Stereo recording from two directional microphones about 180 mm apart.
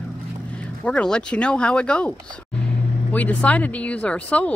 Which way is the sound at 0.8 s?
5° left (ahead or behind).